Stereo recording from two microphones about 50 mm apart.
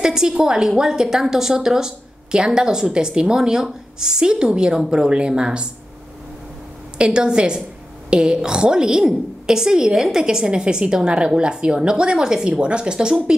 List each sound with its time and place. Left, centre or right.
0.0 s a woman's voice: centre
7.0 s a woman's voice: centre